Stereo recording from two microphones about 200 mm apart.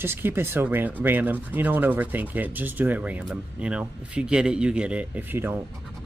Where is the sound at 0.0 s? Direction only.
10° right (ahead or behind).